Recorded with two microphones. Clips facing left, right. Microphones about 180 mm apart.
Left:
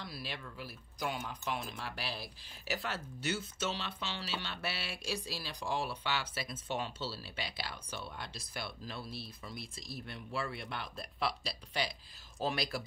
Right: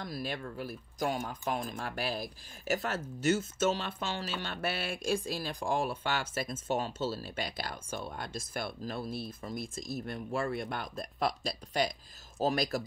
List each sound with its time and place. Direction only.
0.0 s speech: 45° right (ahead or behind)